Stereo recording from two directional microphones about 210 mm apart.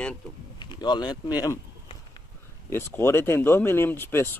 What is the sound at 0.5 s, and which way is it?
Speech, 20° left (ahead or behind).